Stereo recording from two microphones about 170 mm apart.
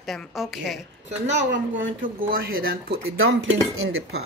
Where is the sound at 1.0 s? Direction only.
45° right (ahead or behind).